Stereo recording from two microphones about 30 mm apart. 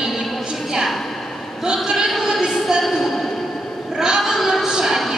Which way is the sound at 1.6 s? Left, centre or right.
Right.